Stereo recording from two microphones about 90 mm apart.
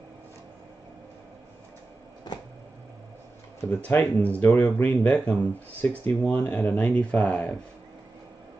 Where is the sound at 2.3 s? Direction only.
50° left (ahead or behind).